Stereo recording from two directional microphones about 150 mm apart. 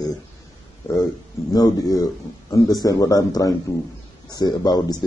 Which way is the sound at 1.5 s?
25° left (ahead or behind).